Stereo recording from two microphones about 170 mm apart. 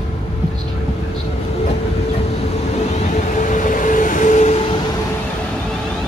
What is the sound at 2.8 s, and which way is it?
Vehicle, 40° left (ahead or behind).